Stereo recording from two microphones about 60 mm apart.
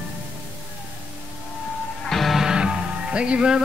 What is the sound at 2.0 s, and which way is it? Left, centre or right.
Music, centre.